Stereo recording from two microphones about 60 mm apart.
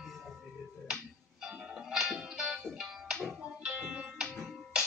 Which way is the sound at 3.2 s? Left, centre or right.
Right.